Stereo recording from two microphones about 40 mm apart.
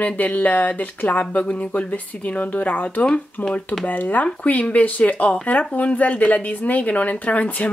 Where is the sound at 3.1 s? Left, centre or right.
Centre.